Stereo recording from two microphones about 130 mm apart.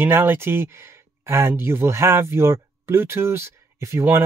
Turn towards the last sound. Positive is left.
turn(degrees=-20)  # may be behind; listen again after turning